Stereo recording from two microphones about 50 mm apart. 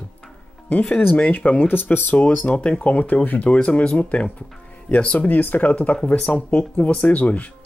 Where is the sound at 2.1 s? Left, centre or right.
Left.